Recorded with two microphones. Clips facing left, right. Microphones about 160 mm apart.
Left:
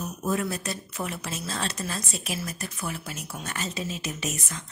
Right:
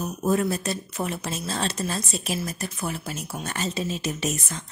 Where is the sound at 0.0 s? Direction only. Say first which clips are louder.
Right 5 dB; 35° right (ahead or behind).